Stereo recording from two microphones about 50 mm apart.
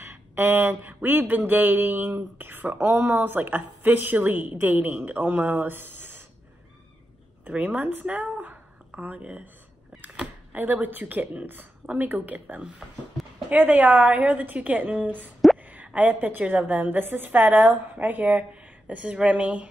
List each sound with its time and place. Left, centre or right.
0.0 s speech: right
2.8 s speech: right
3.2 s a woman's voice: right
7.5 s a woman's voice: right
10.5 s a woman's voice: right
18.5 s a sound: right
19.2 s a woman's voice: right